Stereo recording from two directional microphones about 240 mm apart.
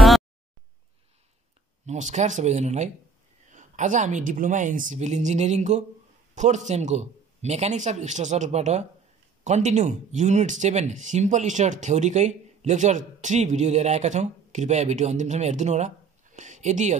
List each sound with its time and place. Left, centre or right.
1.9 s speech: right